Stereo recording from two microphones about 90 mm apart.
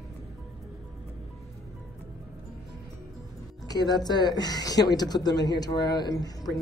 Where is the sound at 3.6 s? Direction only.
45° left (ahead or behind).